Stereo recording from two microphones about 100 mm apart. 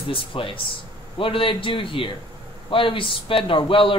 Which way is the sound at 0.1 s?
60° left (ahead or behind).